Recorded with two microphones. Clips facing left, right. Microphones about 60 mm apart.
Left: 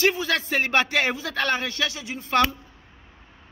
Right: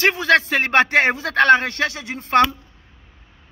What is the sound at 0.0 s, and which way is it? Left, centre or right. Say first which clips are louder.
A man's voice: right 6 dB; right.